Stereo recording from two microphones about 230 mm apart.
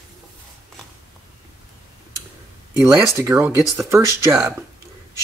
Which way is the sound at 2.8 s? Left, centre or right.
Centre.